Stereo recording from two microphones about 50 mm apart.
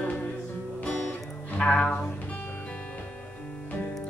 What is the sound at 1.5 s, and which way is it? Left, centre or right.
Music, left.